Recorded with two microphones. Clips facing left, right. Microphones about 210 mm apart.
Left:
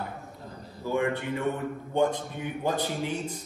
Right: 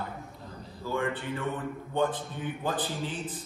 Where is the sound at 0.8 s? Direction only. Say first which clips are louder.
Left 4 dB; 15° left (ahead or behind).